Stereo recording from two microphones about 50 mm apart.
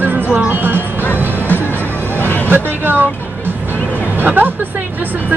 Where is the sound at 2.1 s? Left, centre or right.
Left.